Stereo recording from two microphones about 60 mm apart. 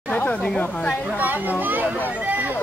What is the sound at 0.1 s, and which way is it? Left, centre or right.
Chatter, left.